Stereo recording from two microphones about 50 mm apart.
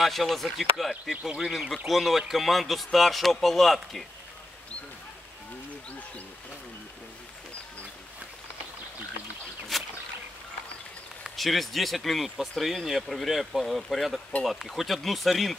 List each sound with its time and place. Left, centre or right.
0.0 s a man's voice: centre
1.1 s a man's voice: centre
5.9 s speech: left
9.7 s rowboat: centre
11.3 s a man's voice: centre